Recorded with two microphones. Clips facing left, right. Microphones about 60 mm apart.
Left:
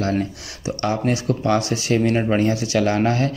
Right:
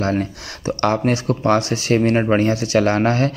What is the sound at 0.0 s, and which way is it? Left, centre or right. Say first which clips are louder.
Speech: right 2 dB; right.